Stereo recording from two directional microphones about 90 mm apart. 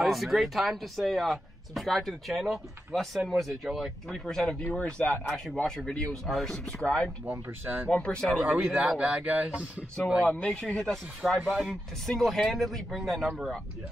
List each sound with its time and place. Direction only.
0.0 s speech: centre (ahead or behind)
5.3 s speech: centre (ahead or behind)
7.2 s speech: 20° right (ahead or behind)
7.9 s speech: 10° left (ahead or behind)
8.5 s speech: 10° right (ahead or behind)
10.3 s speech: 15° left (ahead or behind)
10.6 s speech: 5° left (ahead or behind)